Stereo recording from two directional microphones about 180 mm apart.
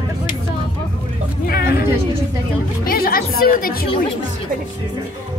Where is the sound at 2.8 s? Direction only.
55° left (ahead or behind).